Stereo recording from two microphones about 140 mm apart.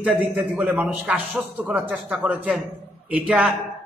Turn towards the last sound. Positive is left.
turn(degrees=-10)  # may be behind; listen again after turning